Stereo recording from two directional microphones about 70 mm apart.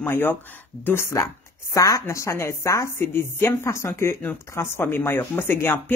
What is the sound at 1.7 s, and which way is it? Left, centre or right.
Speech, left.